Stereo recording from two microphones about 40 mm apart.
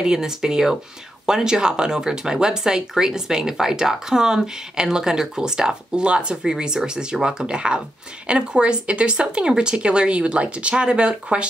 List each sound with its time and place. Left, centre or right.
0.0 s speech: centre